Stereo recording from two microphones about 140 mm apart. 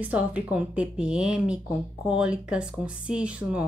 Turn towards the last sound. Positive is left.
turn(degrees=-10)  # may be behind; listen again after turning